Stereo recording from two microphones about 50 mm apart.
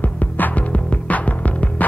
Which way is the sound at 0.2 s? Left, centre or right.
Left.